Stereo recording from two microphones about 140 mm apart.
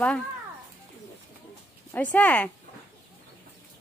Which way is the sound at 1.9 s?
10° left (ahead or behind).